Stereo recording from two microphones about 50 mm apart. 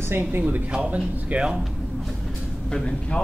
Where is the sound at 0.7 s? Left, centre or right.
Right.